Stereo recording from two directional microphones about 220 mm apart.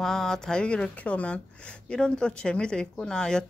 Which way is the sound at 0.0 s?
Centre (ahead or behind).